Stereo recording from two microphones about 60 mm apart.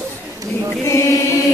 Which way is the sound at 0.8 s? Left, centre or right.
Left.